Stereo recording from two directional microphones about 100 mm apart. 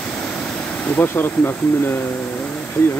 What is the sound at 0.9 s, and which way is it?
Speech, 20° left (ahead or behind).